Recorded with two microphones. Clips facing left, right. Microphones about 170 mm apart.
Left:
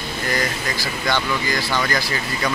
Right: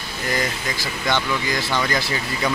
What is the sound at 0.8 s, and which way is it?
Speech, 20° right (ahead or behind).